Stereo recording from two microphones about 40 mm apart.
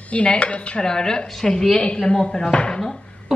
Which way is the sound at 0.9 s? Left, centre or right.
Centre.